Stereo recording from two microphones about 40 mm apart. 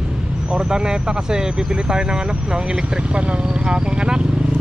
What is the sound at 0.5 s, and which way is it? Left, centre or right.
Speech, right.